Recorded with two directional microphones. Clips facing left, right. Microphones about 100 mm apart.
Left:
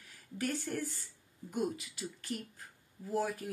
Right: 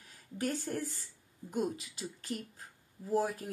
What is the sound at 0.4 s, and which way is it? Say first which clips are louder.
Speech: right 1 dB; 30° right (ahead or behind).